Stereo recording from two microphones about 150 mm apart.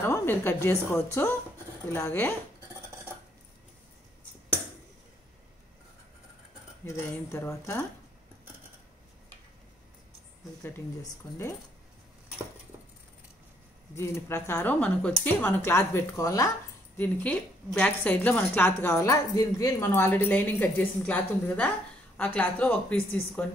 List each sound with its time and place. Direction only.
0.0 s a woman's voice: 15° left (ahead or behind)
2.7 s a sound: 15° right (ahead or behind)
6.9 s speech: 20° left (ahead or behind)
10.6 s speech: 20° left (ahead or behind)
13.9 s a woman's voice: 20° left (ahead or behind)